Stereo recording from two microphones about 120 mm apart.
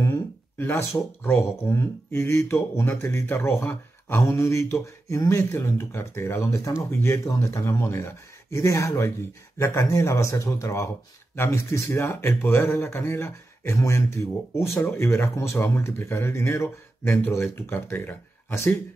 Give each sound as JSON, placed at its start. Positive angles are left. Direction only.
{"t": 0.0, "sound": "speech", "side_deg": 20}